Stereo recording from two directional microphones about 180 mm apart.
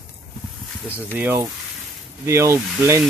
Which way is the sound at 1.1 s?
10° right (ahead or behind).